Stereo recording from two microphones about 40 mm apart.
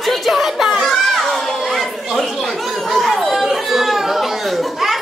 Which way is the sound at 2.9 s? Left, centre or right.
Centre.